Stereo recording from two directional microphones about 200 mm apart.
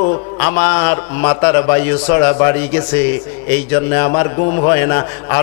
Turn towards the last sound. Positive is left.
turn(degrees=20)  # may be behind; listen again after turning